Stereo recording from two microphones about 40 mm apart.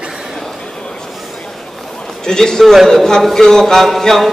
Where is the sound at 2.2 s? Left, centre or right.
Centre.